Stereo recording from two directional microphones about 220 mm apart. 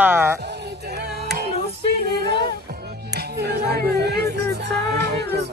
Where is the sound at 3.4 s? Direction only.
50° right (ahead or behind).